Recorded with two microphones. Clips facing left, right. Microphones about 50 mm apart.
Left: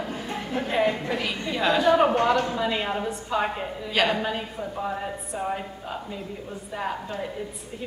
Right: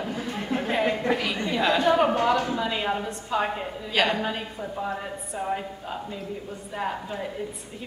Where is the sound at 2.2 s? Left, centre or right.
Left.